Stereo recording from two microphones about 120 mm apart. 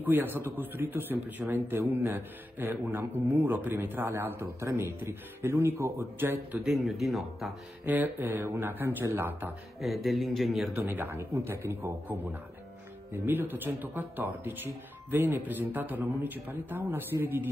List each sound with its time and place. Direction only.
0.0 s a man's voice: 15° right (ahead or behind)
6.6 s speech: centre (ahead or behind)
7.8 s a man's voice: 15° right (ahead or behind)
10.0 s speech: centre (ahead or behind)
10.8 s a man's voice: 15° right (ahead or behind)